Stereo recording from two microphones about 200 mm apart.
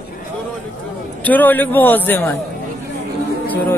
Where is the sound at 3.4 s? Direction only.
10° left (ahead or behind).